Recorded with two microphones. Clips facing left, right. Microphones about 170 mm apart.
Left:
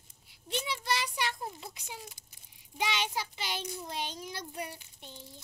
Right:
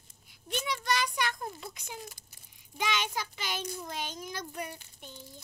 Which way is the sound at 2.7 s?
30° left (ahead or behind).